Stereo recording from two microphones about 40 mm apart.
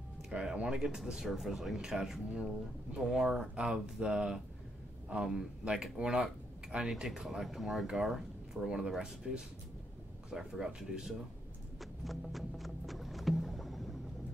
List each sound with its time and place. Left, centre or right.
0.3 s speech: centre
1.4 s speech: centre
10.3 s speech: centre
11.8 s rowboat: centre